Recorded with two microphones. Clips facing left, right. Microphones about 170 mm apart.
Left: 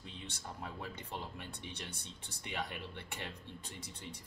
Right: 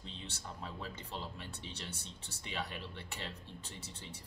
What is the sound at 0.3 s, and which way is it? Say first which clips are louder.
Speech: left 1 dB; 15° left (ahead or behind).